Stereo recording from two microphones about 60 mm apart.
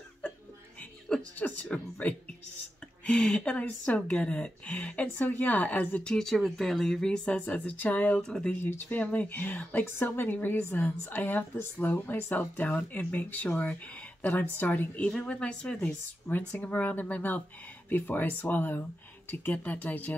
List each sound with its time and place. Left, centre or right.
1.4 s speech: left
6.0 s speech: centre; by 8.2 s left
8.2 s speech: centre
8.9 s a woman's voice: left
15.2 s speech: centre
16.3 s a woman's voice: left